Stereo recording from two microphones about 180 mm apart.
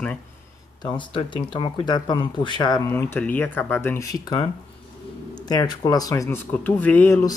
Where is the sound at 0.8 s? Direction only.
25° left (ahead or behind).